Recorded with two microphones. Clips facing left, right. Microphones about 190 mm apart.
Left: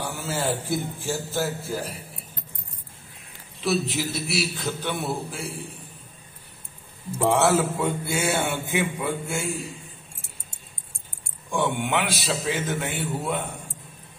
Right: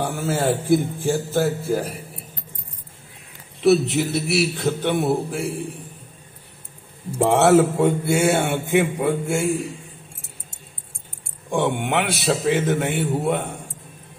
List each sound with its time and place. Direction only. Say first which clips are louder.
0.0 s speech: right 6 dB; 55° right (ahead or behind)
3.9 s speech: right 6 dB; 60° right (ahead or behind)
7.3 s speech: right 8 dB; 60° right (ahead or behind)
11.5 s speech: right 4 dB; 60° right (ahead or behind)